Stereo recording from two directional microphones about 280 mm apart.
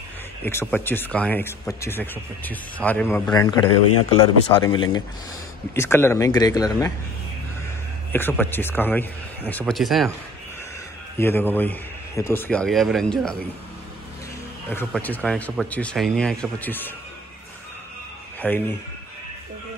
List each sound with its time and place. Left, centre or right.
0.4 s speech: centre
8.1 s speech: centre
11.1 s speech: centre
14.7 s speech: centre
18.4 s speech: centre